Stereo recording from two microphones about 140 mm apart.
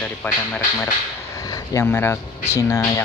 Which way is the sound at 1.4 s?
25° left (ahead or behind).